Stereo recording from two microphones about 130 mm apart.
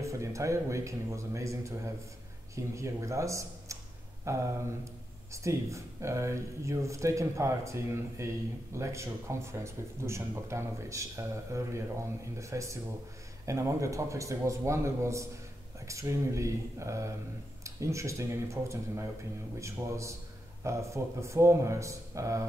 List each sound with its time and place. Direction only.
0.0 s a man's voice: 25° right (ahead or behind)